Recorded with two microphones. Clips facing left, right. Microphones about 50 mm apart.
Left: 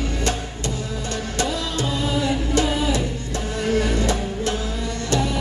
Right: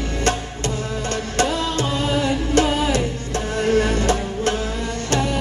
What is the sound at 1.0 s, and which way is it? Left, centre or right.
Music, right.